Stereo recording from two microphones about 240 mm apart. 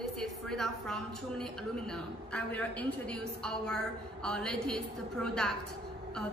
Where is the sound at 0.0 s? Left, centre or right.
Centre.